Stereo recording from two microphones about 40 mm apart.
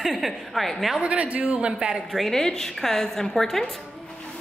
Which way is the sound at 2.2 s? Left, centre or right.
Centre.